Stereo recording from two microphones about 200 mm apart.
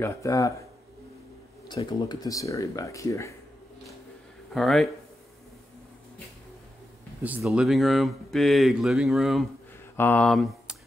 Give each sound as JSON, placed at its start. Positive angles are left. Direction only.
{"t": 0.0, "sound": "speech", "side_deg": 15}
{"t": 1.7, "sound": "speech", "side_deg": 20}
{"t": 4.6, "sound": "speech", "side_deg": 0}
{"t": 7.2, "sound": "speech", "side_deg": -5}